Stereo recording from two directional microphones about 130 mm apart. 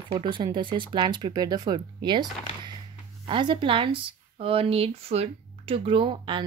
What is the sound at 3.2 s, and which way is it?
Speech, 40° right (ahead or behind).